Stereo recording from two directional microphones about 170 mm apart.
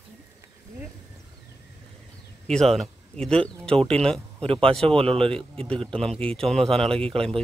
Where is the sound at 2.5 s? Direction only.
Centre (ahead or behind).